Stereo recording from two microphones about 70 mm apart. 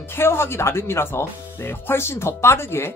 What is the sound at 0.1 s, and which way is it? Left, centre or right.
Speech, left.